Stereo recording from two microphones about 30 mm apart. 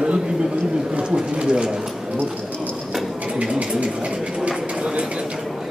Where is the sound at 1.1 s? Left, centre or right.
Right.